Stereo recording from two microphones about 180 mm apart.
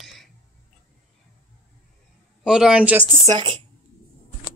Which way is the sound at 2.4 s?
5° right (ahead or behind).